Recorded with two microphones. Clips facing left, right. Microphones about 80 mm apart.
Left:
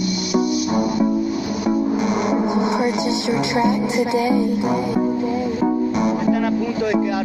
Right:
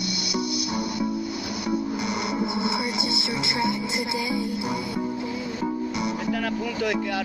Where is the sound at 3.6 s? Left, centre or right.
Left.